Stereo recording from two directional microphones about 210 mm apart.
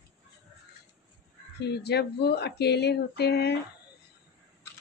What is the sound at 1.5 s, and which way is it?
Speech, 50° left (ahead or behind).